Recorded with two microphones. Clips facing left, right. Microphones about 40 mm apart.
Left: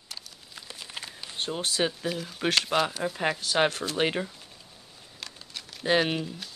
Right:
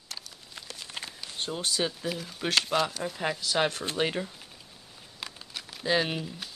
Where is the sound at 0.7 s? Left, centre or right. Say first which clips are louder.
Left 1 dB; centre.